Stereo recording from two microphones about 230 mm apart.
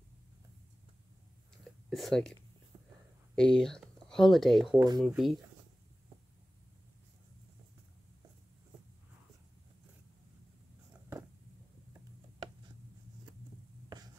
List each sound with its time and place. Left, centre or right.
1.6 s a sound: centre
3.3 s speech: centre
4.7 s speech: centre
5.0 s speech: centre